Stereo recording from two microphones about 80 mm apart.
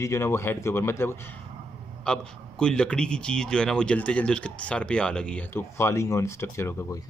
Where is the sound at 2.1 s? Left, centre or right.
Centre.